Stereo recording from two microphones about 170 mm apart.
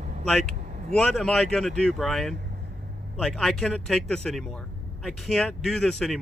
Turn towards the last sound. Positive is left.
turn(degrees=5)  # may be behind; listen again after turning